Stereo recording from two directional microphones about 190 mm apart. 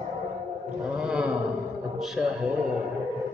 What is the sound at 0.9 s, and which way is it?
Mantra, 5° right (ahead or behind).